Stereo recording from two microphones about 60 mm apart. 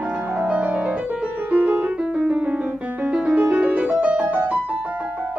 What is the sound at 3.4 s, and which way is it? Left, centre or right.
Music, right.